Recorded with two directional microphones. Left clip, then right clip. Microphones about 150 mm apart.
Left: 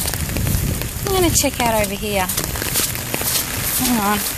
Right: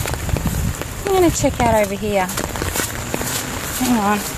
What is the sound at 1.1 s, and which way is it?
Speech, 10° right (ahead or behind).